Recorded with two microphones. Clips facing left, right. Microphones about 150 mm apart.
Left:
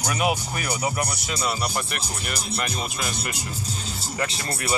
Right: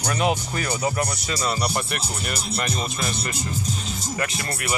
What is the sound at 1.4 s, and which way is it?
Speech, centre (ahead or behind).